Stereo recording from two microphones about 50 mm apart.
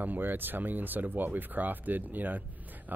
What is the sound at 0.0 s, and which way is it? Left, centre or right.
Speech, right.